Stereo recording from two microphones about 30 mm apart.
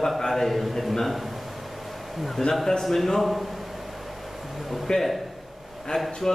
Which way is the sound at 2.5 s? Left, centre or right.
Centre.